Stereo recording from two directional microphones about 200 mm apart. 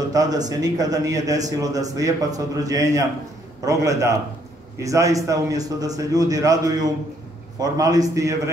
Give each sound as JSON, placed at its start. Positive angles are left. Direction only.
{"t": 0.1, "sound": "a man's voice", "side_deg": -20}